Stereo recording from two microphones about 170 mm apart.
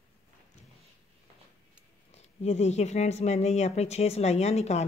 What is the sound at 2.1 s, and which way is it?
A woman's voice, 40° left (ahead or behind).